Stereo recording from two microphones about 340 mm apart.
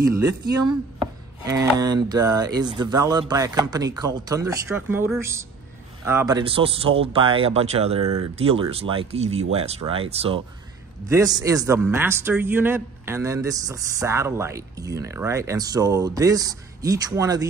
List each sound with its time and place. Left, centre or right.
1.4 s a man's voice: centre